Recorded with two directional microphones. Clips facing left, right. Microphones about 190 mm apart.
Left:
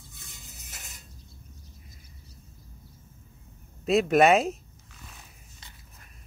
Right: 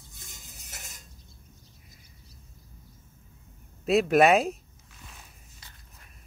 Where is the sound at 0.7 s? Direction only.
45° right (ahead or behind).